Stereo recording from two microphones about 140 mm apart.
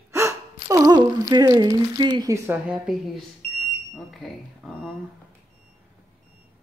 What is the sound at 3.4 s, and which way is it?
Smoke detector, 90° left.